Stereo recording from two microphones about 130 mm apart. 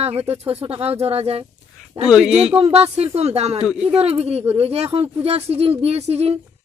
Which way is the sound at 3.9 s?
50° right (ahead or behind).